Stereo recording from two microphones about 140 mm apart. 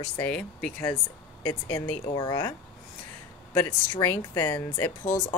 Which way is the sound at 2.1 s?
30° left (ahead or behind).